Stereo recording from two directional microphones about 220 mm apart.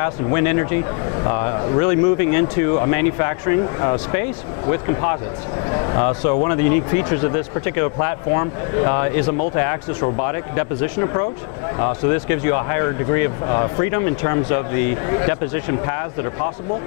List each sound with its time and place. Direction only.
0.0 s speech: 15° left (ahead or behind)